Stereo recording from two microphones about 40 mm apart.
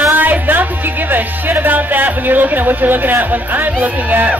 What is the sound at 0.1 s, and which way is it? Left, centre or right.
Music, right.